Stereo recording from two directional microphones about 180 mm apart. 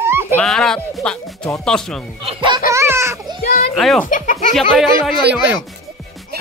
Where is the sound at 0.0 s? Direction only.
15° right (ahead or behind).